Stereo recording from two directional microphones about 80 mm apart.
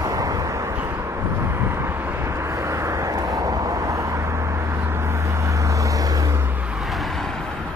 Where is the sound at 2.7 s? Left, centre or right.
Right.